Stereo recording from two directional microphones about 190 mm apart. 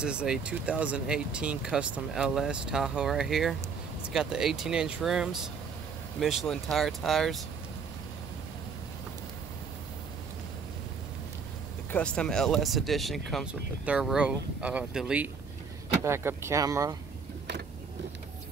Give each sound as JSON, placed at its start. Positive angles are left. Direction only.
{"t": 0.0, "sound": "speech", "side_deg": -5}
{"t": 11.9, "sound": "speech", "side_deg": 5}